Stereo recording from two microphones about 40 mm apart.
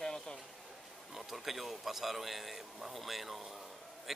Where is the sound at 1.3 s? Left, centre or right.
Centre.